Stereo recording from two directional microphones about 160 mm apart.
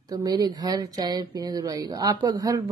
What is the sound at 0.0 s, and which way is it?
Speech, 25° right (ahead or behind).